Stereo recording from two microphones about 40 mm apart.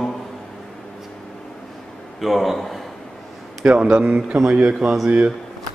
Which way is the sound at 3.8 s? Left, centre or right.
Right.